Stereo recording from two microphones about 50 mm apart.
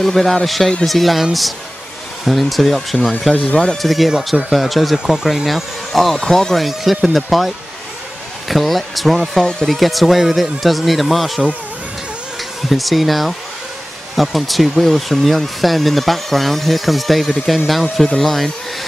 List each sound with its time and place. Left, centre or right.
0.0 s speech: centre
2.2 s speech: centre
6.1 s speech: centre
6.7 s speech: centre
9.4 s speech: centre
9.7 s speech: centre
12.6 s speech: centre